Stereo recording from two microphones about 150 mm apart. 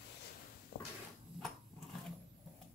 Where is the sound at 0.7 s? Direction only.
90° left.